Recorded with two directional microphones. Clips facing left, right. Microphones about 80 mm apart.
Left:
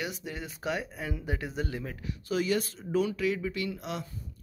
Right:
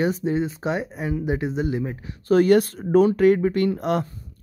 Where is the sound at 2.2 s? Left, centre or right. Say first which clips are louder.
Right 13 dB; right.